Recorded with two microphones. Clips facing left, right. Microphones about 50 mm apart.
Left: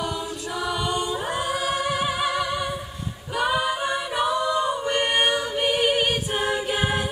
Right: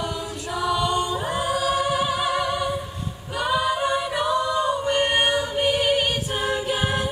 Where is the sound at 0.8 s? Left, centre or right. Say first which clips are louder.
Right 2 dB; centre.